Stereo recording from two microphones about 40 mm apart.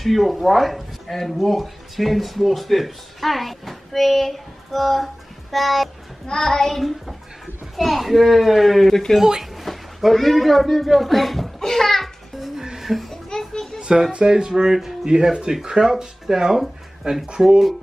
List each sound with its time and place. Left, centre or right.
0.0 s speech: centre
6.2 s a child's voice: centre
12.5 s music: centre
13.5 s children playing: centre
13.7 s music: right
14.1 s speech: centre